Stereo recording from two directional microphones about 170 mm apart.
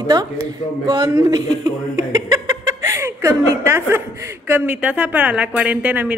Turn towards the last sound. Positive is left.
turn(degrees=-10)  # may be behind; listen again after turning